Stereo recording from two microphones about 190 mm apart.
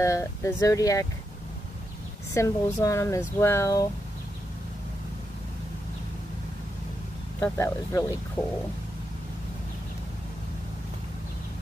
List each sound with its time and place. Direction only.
0.0 s speech: 15° left (ahead or behind)
2.3 s speech: 15° left (ahead or behind)
7.3 s speech: 10° left (ahead or behind)